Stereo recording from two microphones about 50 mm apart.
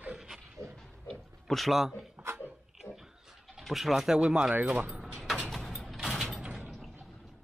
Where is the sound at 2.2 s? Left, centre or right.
Right.